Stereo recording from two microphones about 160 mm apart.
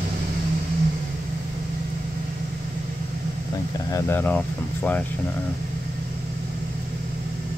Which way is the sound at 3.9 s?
15° left (ahead or behind).